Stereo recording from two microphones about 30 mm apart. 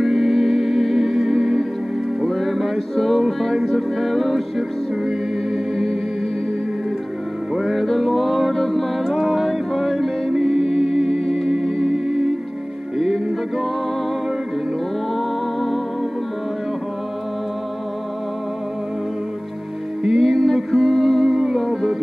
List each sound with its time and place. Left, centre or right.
0.0 s music: centre
7.5 s music: centre
7.8 s music: centre
15.1 s music: centre
20.1 s music: centre